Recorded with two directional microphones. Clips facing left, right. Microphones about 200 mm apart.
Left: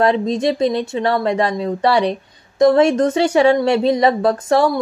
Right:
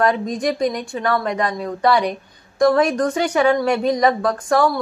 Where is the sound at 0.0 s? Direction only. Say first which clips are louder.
Left 3 dB; 25° left (ahead or behind).